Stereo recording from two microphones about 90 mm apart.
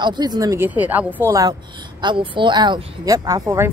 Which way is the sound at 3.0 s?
40° right (ahead or behind).